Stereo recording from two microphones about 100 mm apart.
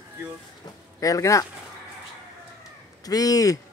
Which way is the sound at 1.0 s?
35° left (ahead or behind).